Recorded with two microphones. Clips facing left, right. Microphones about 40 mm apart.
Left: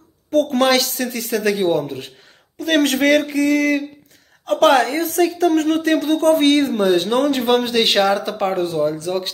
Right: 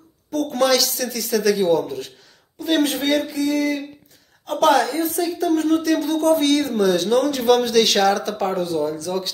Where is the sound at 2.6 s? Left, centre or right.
Left.